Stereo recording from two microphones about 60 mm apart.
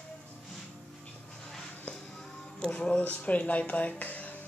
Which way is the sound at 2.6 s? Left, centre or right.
Centre.